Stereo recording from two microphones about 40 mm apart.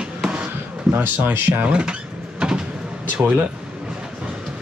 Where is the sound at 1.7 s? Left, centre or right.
Right.